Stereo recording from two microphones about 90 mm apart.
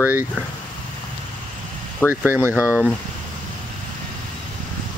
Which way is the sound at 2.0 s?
25° left (ahead or behind).